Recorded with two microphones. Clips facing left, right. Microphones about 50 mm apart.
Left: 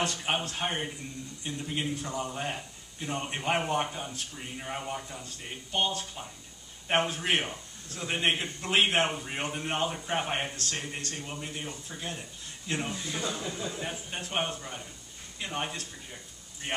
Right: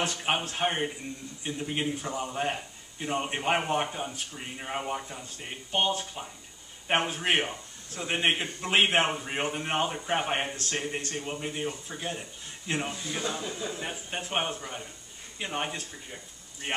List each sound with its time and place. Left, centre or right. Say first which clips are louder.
0.0 s a man's voice: right 1 dB; centre
13.7 s a man's voice: right 1 dB; centre